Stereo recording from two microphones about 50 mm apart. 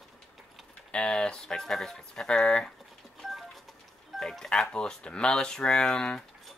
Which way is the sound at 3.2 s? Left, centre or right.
Centre.